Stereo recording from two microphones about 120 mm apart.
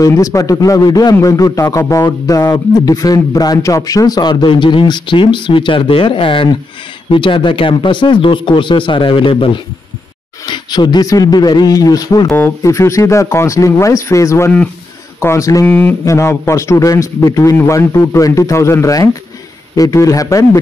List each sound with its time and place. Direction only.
0.0 s a man's voice: 30° left (ahead or behind)
15.6 s a sound: 15° left (ahead or behind)
16.1 s a man's voice: 25° left (ahead or behind)